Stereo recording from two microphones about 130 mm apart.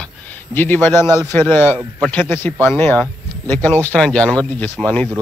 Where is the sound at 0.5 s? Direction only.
15° left (ahead or behind).